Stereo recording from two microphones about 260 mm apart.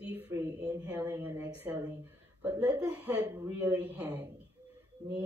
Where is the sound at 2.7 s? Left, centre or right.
Centre.